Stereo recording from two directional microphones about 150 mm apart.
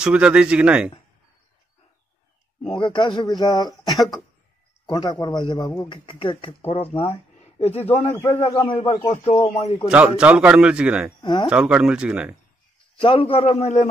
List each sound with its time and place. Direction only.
0.0 s a man's voice: 5° right (ahead or behind)
2.7 s a man's voice: 35° left (ahead or behind)
9.8 s a man's voice: 10° right (ahead or behind)
11.1 s speech: 30° left (ahead or behind)
11.4 s a man's voice: 5° right (ahead or behind)
13.0 s speech: 40° left (ahead or behind)